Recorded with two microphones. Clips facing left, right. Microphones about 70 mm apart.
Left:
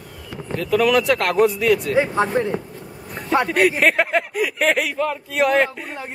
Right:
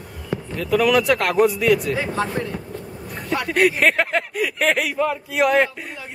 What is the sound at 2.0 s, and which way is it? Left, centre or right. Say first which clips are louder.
Speech: left 5 dB; left.